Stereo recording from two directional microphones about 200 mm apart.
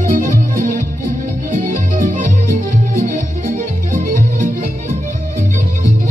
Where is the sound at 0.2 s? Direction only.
40° right (ahead or behind).